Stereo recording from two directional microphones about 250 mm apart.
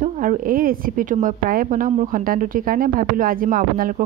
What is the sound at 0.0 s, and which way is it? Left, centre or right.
A woman's voice, right.